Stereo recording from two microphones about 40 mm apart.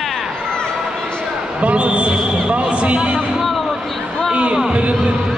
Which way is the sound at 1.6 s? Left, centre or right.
Right.